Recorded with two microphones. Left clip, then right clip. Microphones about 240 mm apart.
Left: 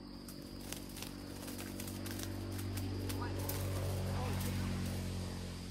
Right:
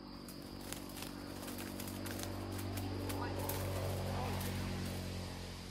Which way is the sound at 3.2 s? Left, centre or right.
Right.